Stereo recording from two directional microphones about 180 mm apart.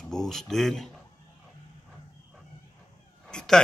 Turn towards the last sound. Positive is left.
turn(degrees=5)  # may be behind; listen again after turning